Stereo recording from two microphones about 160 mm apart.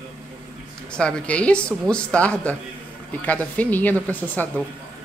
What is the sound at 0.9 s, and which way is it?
A woman's voice, 5° left (ahead or behind).